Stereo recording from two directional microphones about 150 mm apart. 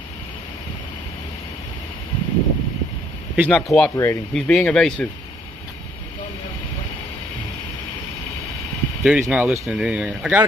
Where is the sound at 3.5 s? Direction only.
5° left (ahead or behind).